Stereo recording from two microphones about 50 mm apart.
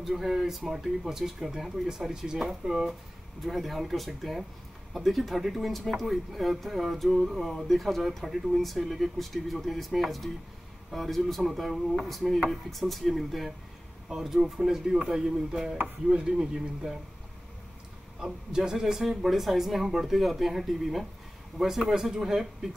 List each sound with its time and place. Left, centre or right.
0.0 s speech: centre
18.2 s speech: centre